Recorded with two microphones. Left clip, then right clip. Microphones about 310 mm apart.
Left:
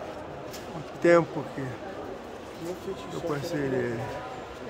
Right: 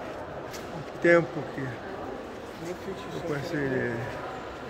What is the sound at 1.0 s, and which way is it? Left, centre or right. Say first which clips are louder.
Speech: left 1 dB; centre.